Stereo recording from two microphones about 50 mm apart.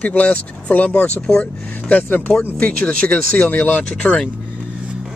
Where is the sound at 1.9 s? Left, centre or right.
Left.